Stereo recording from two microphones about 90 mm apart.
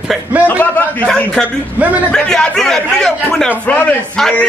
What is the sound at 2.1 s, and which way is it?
A man's voice, 10° left (ahead or behind).